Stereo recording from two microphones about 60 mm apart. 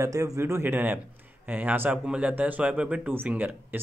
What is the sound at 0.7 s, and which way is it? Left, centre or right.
Speech, right.